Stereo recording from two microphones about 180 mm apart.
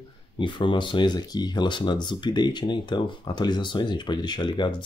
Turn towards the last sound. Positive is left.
turn(degrees=25)  # may be behind; listen again after turning